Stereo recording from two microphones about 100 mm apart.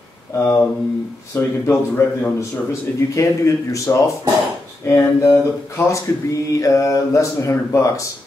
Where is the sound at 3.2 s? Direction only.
30° left (ahead or behind).